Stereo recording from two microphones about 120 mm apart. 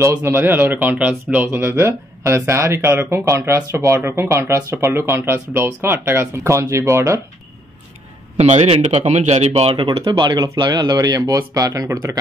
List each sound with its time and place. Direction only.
0.0 s speech: 20° right (ahead or behind)
8.4 s speech: 65° right (ahead or behind)
8.8 s speech: 70° right (ahead or behind)
9.8 s speech: 35° right (ahead or behind)